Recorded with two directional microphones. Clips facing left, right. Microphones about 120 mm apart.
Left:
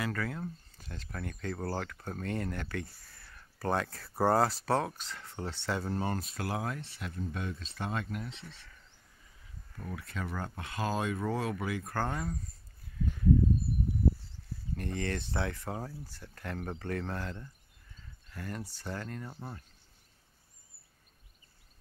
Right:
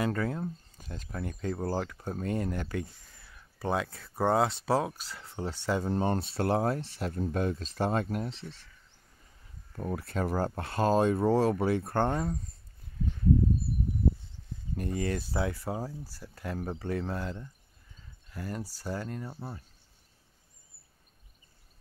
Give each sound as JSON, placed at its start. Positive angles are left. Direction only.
{"t": 0.0, "sound": "speech", "side_deg": -25}
{"t": 9.8, "sound": "speech", "side_deg": -40}
{"t": 14.8, "sound": "speech", "side_deg": -10}